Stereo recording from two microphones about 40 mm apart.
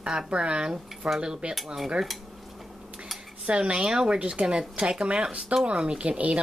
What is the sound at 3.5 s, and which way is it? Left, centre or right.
Speech, right.